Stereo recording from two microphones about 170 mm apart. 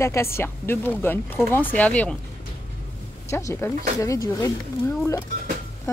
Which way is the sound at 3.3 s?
15° left (ahead or behind).